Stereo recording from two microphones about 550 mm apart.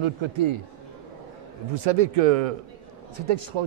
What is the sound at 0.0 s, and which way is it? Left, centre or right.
Speech, right.